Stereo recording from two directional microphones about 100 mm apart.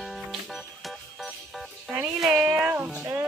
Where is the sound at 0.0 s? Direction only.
Centre (ahead or behind).